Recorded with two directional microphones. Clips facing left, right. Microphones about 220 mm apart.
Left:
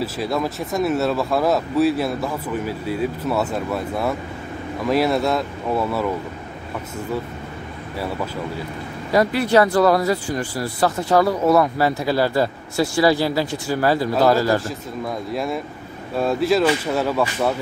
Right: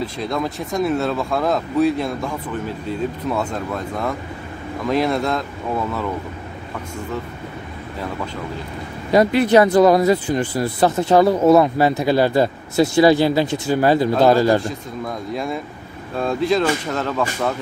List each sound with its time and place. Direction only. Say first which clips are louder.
0.0 s speech: left 1 dB; 5° left (ahead or behind)
9.1 s speech: right 3 dB; 20° right (ahead or behind)
14.6 s speech: right 1 dB; centre (ahead or behind)